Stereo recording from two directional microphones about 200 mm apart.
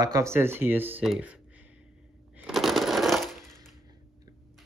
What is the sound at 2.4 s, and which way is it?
Coin, centre (ahead or behind).